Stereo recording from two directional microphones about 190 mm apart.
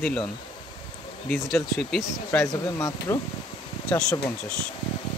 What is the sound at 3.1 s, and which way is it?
Speech, 15° left (ahead or behind).